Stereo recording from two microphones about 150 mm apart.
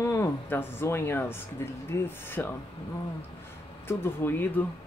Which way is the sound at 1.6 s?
15° left (ahead or behind).